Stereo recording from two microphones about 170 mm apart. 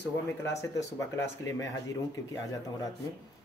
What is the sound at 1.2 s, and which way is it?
Speech, 15° left (ahead or behind).